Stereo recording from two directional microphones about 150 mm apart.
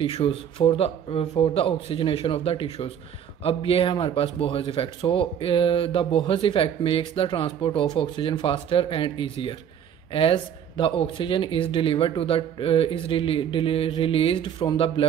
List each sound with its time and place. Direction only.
0.0 s speech: 40° left (ahead or behind)